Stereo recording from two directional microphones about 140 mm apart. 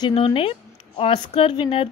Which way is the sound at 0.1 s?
40° left (ahead or behind).